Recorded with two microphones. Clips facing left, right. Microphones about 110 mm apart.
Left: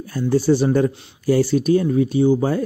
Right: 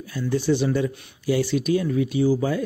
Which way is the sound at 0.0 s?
40° left (ahead or behind).